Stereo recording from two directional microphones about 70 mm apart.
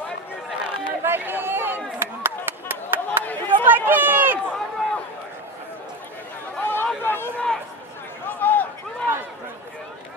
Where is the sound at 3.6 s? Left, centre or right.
Right.